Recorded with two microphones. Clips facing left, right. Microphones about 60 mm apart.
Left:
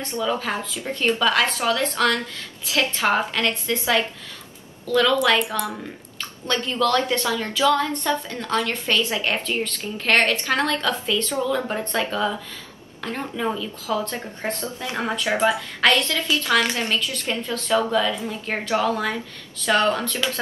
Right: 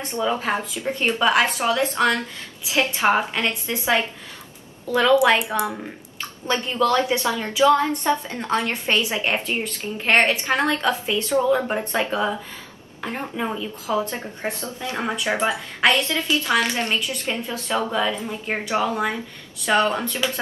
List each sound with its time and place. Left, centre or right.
0.0 s a woman's voice: right